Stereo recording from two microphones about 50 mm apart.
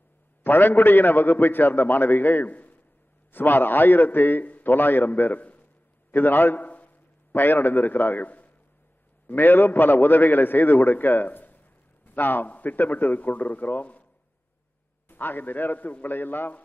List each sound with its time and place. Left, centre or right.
0.4 s a man's voice: left
6.1 s a man's voice: left
15.0 s a man's voice: left